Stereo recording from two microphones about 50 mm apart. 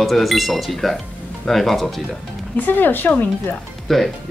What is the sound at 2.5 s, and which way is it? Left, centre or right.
Speech, left.